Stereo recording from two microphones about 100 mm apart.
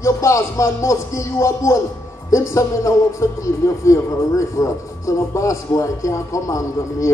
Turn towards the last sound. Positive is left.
turn(degrees=30)  # may be behind; listen again after turning